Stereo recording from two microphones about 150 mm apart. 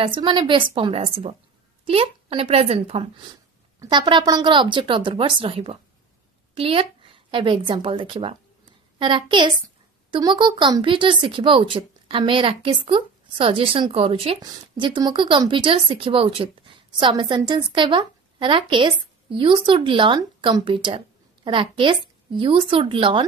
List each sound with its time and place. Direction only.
0.0 s a woman's voice: 35° right (ahead or behind)